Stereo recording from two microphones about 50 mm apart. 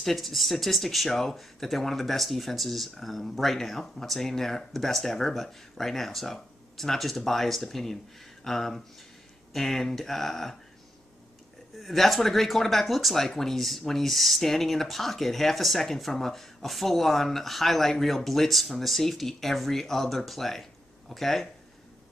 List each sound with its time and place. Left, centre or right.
0.0 s speech: centre
11.8 s speech: centre